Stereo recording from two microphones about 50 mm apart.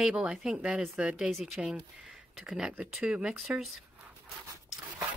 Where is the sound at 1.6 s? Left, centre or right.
Centre.